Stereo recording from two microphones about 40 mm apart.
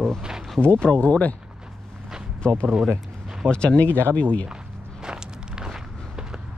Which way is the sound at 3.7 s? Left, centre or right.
Left.